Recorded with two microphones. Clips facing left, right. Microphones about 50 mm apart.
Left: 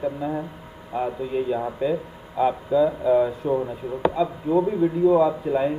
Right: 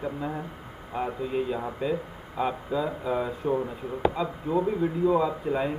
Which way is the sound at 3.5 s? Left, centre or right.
Centre.